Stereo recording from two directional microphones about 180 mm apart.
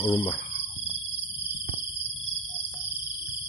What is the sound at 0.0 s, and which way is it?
Speech, 30° left (ahead or behind).